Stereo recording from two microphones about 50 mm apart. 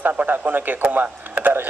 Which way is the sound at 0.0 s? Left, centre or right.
Right.